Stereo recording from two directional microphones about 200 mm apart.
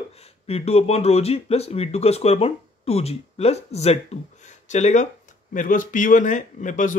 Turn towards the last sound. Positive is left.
turn(degrees=40)  # may be behind; listen again after turning